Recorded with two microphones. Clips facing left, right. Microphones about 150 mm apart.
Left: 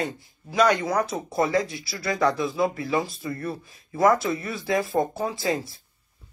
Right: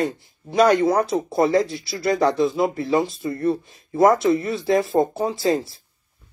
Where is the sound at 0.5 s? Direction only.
30° right (ahead or behind).